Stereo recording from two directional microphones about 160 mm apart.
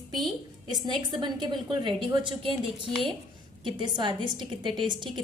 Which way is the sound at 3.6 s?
30° right (ahead or behind).